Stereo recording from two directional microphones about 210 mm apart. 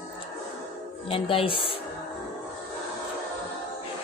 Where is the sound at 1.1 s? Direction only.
25° left (ahead or behind).